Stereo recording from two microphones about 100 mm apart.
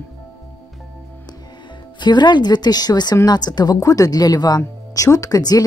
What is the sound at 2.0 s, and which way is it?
A woman's voice, 45° left (ahead or behind).